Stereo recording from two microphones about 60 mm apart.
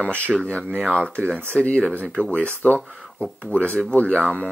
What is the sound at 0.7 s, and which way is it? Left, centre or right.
Speech, centre.